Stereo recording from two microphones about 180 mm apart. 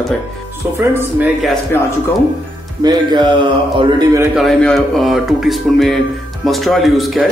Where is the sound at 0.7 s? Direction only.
10° right (ahead or behind).